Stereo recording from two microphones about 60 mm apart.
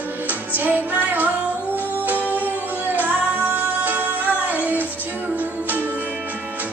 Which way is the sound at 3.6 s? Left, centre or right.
Right.